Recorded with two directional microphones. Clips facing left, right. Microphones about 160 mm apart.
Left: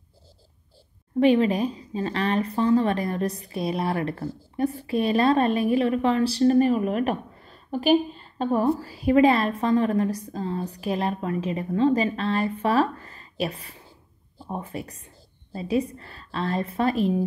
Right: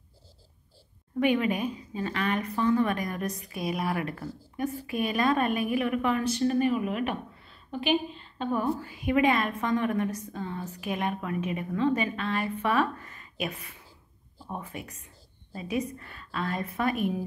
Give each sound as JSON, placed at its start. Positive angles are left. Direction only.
{"t": 1.2, "sound": "a woman's voice", "side_deg": 35}